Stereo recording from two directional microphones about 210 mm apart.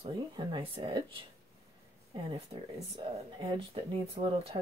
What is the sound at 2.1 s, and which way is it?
Speech, 25° right (ahead or behind).